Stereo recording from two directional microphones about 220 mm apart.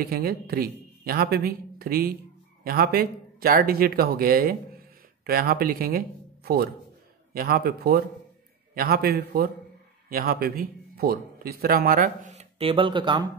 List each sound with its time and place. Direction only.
0.0 s a man's voice: 40° right (ahead or behind); by 13.3 s 20° right (ahead or behind)